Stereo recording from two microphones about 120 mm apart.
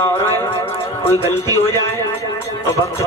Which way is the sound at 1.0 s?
20° left (ahead or behind).